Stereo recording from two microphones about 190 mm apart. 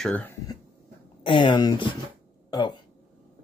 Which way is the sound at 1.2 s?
25° left (ahead or behind).